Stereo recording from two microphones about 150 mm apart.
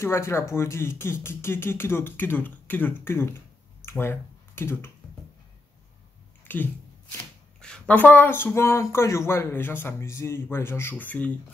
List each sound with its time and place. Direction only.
0.0 s speech: 15° left (ahead or behind)
6.4 s a sound: 15° left (ahead or behind)
7.6 s speech: 5° left (ahead or behind)